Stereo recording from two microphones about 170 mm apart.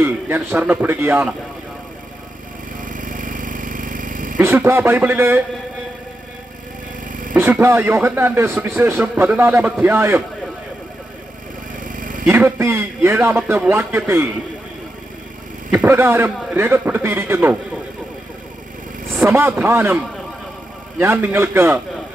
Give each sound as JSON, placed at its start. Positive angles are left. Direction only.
{"t": 0.0, "sound": "speech", "side_deg": -15}
{"t": 2.8, "sound": "a sound", "side_deg": -50}
{"t": 4.4, "sound": "speech", "side_deg": -15}
{"t": 7.1, "sound": "a sound", "side_deg": -50}
{"t": 7.3, "sound": "speech", "side_deg": -10}
{"t": 11.8, "sound": "a sound", "side_deg": -50}
{"t": 12.3, "sound": "speech", "side_deg": -15}
{"t": 15.7, "sound": "speech", "side_deg": -10}
{"t": 19.2, "sound": "speech", "side_deg": -15}
{"t": 21.0, "sound": "speech", "side_deg": -15}